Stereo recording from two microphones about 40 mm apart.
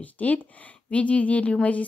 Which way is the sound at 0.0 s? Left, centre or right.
Left.